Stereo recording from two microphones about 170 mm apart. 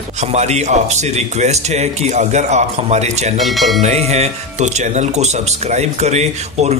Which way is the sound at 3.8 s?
40° right (ahead or behind).